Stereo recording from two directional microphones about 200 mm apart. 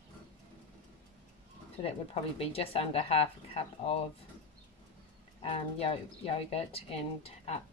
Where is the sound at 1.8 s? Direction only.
30° left (ahead or behind).